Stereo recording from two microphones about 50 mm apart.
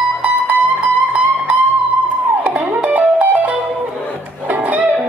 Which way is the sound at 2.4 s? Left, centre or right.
Right.